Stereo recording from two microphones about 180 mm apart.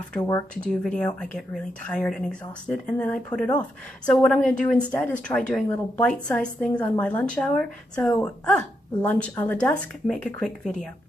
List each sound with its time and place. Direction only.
0.2 s speech: 20° left (ahead or behind)
0.8 s a woman's voice: 5° left (ahead or behind)